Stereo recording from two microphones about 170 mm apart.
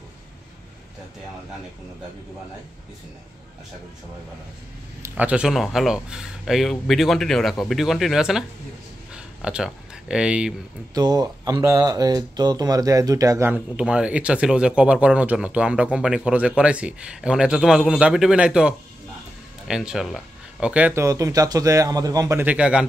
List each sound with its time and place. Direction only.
5.0 s speech: 10° right (ahead or behind)
9.1 s a sound: 5° right (ahead or behind)
11.0 s speech: 20° right (ahead or behind)
13.7 s speech: 5° right (ahead or behind)